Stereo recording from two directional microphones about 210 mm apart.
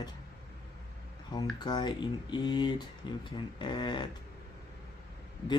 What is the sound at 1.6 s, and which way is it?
Speech, 20° left (ahead or behind).